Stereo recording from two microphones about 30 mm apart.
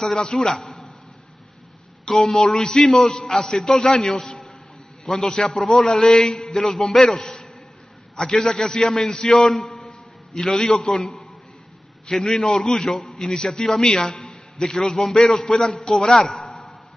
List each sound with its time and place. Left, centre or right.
0.2 s a man's voice: centre
2.0 s a man's voice: centre
5.6 s a man's voice: centre
5.9 s a man's voice: centre
9.8 s a sound: centre
12.1 s a man's voice: centre
14.3 s a sound: left
15.1 s a man's voice: centre
16.0 s a sound: centre